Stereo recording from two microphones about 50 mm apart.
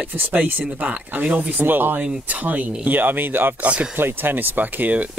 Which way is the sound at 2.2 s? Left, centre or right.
Right.